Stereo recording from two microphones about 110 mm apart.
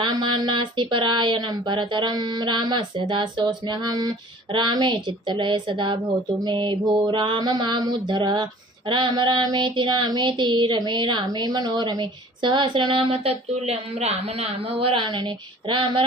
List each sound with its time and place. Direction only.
0.0 s female singing: 50° right (ahead or behind)